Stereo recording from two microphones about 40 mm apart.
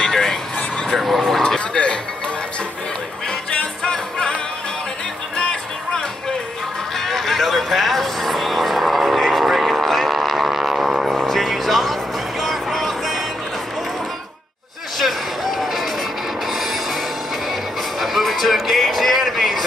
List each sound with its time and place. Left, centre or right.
0.0 s vehicle: centre
0.8 s vehicle: centre
1.4 s a sound: left
3.8 s music: left
5.4 s music: left
7.1 s music: centre
11.1 s vehicle: centre
11.4 s music: centre
15.0 s a sound: centre
18.0 s music: centre